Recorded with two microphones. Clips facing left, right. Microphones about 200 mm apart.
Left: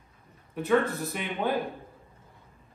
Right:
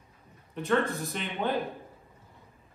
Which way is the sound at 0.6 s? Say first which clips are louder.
Left 2 dB; 5° left (ahead or behind).